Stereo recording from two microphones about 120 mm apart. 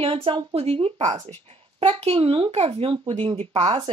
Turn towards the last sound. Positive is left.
turn(degrees=-45)  # may be behind; listen again after turning